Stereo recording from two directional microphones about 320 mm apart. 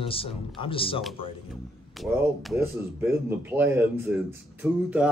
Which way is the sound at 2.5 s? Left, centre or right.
Centre.